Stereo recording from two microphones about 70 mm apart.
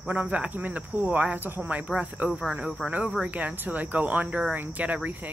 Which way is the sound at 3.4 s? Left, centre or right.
Right.